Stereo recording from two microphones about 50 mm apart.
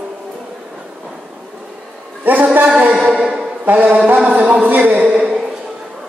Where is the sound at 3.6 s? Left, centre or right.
Right.